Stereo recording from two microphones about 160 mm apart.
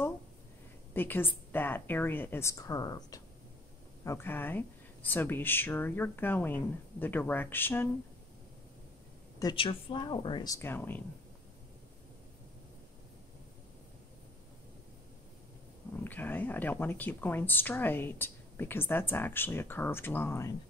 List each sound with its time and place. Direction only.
0.9 s speech: 15° left (ahead or behind)
9.4 s speech: 30° left (ahead or behind); by 11.0 s 15° left (ahead or behind)
16.0 s speech: 10° left (ahead or behind)